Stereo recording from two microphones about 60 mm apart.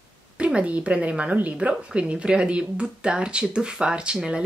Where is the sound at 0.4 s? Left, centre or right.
Centre.